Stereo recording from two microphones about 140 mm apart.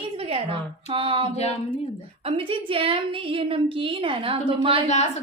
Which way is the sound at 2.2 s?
40° right (ahead or behind).